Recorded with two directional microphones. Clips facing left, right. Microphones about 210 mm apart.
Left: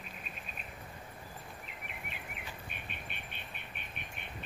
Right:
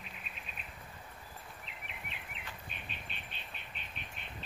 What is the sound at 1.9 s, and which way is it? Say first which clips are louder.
Bird vocalization: left 3 dB; 50° left (ahead or behind).